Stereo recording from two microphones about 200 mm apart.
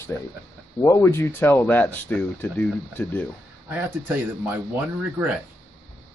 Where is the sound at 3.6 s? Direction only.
10° right (ahead or behind).